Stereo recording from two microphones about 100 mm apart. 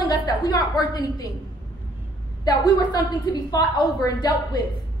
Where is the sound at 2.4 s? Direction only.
40° left (ahead or behind).